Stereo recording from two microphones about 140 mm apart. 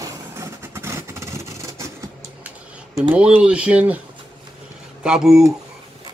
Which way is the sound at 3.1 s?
10° right (ahead or behind).